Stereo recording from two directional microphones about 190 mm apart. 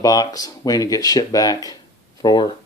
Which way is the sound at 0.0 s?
20° left (ahead or behind).